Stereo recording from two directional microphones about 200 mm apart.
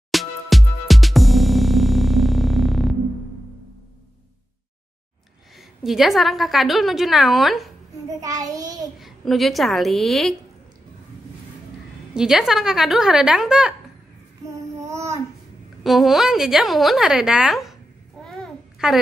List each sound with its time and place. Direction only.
0.1 s music: centre (ahead or behind)
5.6 s a woman's voice: centre (ahead or behind)
8.2 s a child's voice: 15° right (ahead or behind)
9.0 s a woman's voice: centre (ahead or behind)
12.1 s a woman's voice: 5° right (ahead or behind)
14.5 s child singing: 15° right (ahead or behind)
15.8 s a woman's voice: centre (ahead or behind)
18.2 s babbling: centre (ahead or behind)